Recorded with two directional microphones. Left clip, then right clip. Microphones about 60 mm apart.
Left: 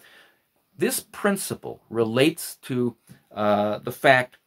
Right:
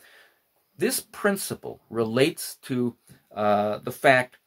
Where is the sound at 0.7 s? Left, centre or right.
Left.